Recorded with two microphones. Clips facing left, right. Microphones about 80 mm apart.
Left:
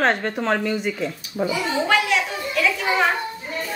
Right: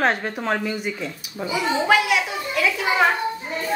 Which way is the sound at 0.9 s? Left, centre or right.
Centre.